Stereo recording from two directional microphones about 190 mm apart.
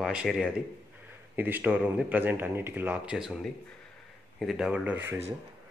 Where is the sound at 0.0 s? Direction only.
5° right (ahead or behind).